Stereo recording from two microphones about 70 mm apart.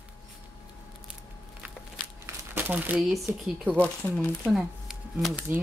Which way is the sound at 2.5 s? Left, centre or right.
Right.